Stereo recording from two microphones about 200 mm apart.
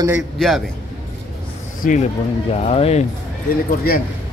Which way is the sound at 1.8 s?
40° left (ahead or behind).